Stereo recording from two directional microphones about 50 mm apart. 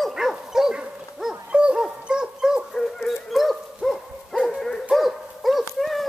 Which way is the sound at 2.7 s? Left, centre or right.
Centre.